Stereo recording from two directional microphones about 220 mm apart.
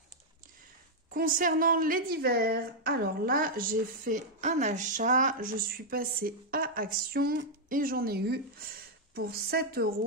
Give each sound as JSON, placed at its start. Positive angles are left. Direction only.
{"t": 1.1, "sound": "a woman's voice", "side_deg": -40}